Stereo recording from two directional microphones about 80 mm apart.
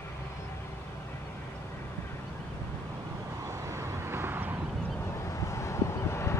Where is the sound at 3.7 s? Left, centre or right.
Right.